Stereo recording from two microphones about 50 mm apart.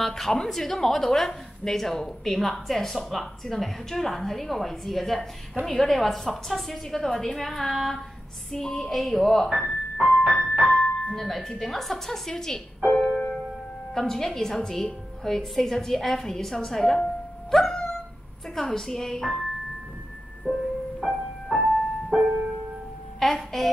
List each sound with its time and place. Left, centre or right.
0.0 s a woman's voice: centre
10.6 s music: left
11.1 s a woman's voice: centre
13.9 s a woman's voice: centre
17.6 s dog: centre
18.5 s a woman's voice: centre
20.5 s a woman's voice: centre
21.0 s music: centre
23.1 s speech: centre